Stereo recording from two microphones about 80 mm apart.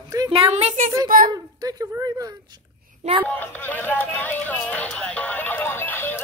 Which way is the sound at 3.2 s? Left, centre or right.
Left.